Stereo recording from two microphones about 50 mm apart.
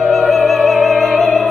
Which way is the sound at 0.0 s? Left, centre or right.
Centre.